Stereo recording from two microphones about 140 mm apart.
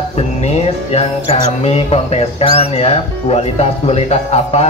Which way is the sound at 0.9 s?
45° left (ahead or behind).